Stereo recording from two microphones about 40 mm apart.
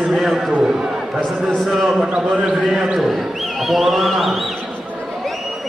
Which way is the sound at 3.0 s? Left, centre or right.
Centre.